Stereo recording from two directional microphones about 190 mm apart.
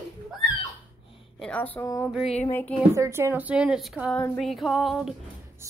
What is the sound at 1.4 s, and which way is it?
A woman's voice, 5° left (ahead or behind).